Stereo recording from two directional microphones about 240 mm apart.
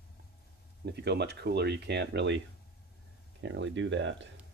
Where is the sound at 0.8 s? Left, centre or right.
Right.